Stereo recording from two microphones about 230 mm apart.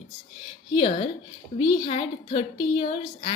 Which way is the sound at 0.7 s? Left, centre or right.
Left.